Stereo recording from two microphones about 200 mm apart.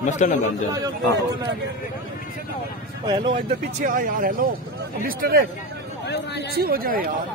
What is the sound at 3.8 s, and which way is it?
Speech, 40° right (ahead or behind).